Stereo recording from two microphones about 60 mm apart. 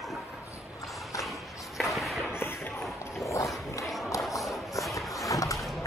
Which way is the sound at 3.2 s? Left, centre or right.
Left.